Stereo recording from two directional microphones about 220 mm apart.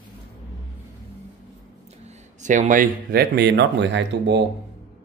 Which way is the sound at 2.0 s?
30° right (ahead or behind).